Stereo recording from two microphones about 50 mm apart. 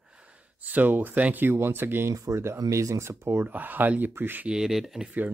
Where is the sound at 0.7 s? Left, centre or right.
Right.